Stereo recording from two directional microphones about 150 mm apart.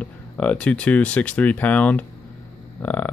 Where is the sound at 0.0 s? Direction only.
10° left (ahead or behind).